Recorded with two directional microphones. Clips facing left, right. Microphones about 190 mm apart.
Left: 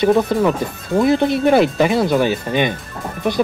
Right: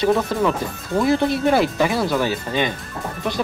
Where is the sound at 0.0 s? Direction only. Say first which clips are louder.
Left 4 dB; 15° left (ahead or behind).